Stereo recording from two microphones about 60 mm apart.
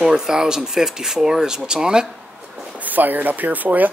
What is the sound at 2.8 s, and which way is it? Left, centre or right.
Speech, right.